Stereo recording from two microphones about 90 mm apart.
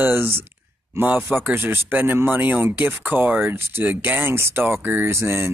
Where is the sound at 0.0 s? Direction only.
20° right (ahead or behind).